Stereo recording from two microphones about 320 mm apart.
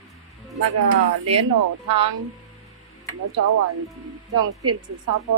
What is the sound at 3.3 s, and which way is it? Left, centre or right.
Speech, right.